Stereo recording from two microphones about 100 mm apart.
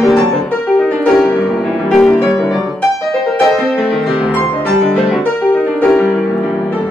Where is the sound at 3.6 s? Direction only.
5° right (ahead or behind).